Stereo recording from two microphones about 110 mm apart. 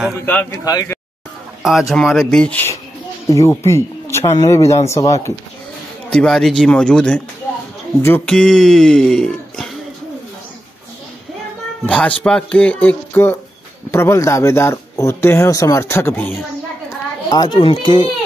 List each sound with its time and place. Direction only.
0.2 s speech: 15° left (ahead or behind)
0.5 s speech: 35° left (ahead or behind)
1.6 s speech: centre (ahead or behind)
3.3 s speech: 25° left (ahead or behind)
6.0 s speech: 10° left (ahead or behind)
8.3 s speech: 5° left (ahead or behind)
11.8 s speech: 10° left (ahead or behind)
17.3 s a child's voice: 40° left (ahead or behind)